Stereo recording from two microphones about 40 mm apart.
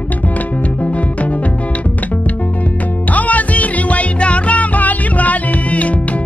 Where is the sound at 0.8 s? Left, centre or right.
Left.